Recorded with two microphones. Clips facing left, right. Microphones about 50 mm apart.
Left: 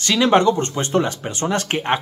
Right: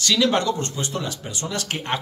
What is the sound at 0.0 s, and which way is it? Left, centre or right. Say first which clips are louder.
A man's voice: left 5 dB; left.